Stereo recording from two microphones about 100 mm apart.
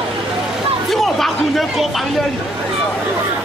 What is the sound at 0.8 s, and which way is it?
Speech, centre (ahead or behind).